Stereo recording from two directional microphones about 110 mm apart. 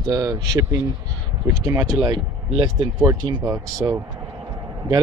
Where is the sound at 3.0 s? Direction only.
35° right (ahead or behind).